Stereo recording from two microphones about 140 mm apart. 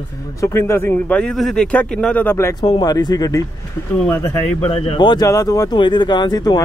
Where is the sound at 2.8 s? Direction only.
30° left (ahead or behind).